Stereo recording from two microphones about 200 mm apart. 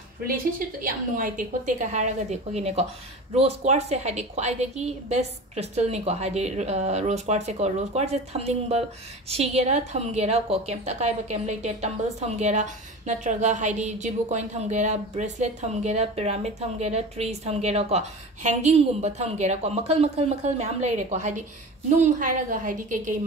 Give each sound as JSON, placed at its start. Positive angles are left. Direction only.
{"t": 0.3, "sound": "a woman's voice", "side_deg": -45}